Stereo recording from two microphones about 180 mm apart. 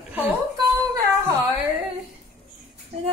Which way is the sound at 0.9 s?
20° right (ahead or behind).